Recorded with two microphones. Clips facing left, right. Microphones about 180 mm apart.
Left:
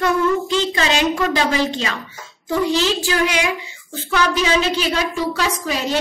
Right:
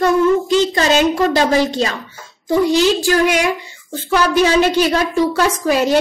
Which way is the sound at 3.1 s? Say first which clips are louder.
Right 5 dB; 45° right (ahead or behind).